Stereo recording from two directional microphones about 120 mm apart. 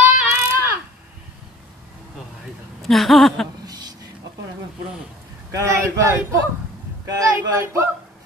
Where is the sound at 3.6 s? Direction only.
35° right (ahead or behind).